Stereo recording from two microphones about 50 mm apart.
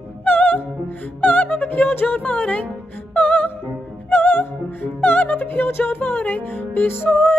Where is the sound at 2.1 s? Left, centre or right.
Left.